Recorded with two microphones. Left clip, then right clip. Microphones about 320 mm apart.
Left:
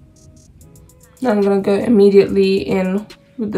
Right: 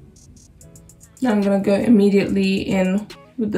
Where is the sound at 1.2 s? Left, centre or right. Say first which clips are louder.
Left 4 dB; centre.